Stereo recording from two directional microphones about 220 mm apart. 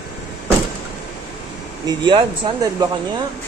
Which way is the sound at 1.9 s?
20° right (ahead or behind).